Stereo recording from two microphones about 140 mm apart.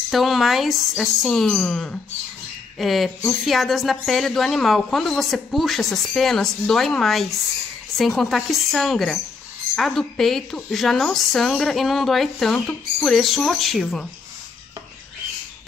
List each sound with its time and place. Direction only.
0.1 s speech: centre (ahead or behind)